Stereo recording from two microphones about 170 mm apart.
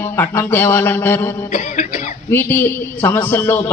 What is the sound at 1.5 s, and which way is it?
Cough, 45° left (ahead or behind).